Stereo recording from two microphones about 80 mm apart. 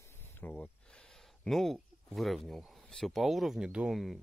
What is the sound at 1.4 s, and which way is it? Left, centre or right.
Speech, centre.